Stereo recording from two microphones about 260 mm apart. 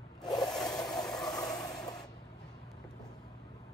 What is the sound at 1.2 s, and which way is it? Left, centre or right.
Vehicle, centre.